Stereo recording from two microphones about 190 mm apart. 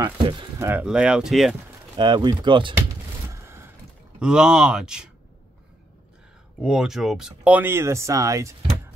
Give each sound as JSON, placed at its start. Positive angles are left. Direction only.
{"t": 0.0, "sound": "speech", "side_deg": -25}
{"t": 0.7, "sound": "speech", "side_deg": -5}
{"t": 2.0, "sound": "speech", "side_deg": -25}
{"t": 3.3, "sound": "a sound", "side_deg": -15}
{"t": 4.2, "sound": "speech", "side_deg": -5}
{"t": 6.6, "sound": "speech", "side_deg": -5}